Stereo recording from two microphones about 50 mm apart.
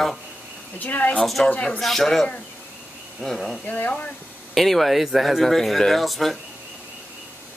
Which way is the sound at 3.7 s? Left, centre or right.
Left.